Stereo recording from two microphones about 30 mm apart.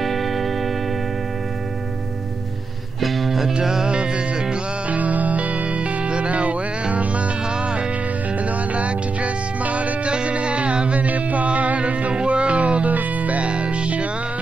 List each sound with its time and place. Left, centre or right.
0.0 s music: centre
3.0 s music: centre
3.9 s music: right
4.8 s music: right
10.1 s music: right
11.0 s music: right
12.1 s music: right
12.9 s music: right
13.4 s music: right